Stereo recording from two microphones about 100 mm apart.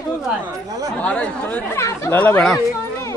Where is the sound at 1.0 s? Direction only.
15° left (ahead or behind).